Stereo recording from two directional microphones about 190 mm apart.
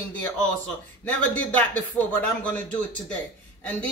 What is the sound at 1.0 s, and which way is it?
Speech, 5° left (ahead or behind).